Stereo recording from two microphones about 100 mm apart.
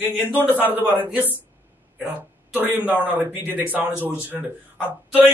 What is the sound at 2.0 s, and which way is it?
A man's voice, 20° right (ahead or behind).